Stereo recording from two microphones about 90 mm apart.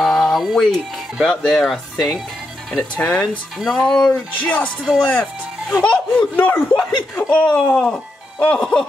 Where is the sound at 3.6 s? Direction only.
5° left (ahead or behind).